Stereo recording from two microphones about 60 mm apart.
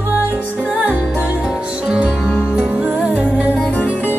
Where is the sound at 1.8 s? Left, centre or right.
Centre.